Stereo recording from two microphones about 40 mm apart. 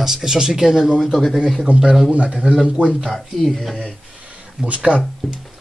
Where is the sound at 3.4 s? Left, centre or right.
Centre.